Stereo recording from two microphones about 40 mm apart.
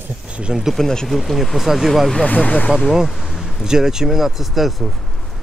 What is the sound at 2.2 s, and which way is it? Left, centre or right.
Speech, left.